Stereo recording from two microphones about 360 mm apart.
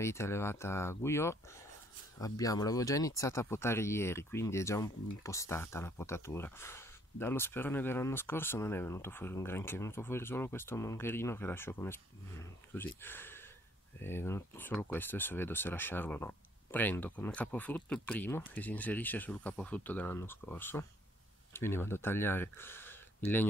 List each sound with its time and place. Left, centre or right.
0.0 s speech: centre